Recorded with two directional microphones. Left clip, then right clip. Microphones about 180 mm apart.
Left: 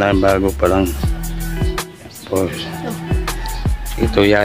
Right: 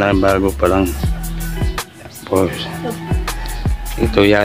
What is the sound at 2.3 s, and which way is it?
Speech, 15° right (ahead or behind).